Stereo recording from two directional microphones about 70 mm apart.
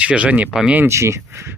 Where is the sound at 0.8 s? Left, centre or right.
Right.